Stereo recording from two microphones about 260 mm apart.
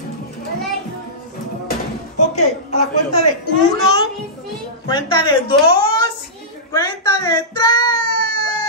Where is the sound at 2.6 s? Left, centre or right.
Left.